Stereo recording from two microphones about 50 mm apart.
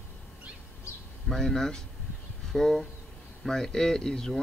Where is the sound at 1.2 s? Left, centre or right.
Centre.